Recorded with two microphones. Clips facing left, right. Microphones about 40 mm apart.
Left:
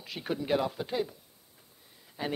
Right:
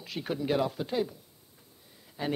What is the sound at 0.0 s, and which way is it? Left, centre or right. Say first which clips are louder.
Speech: right 1 dB; centre.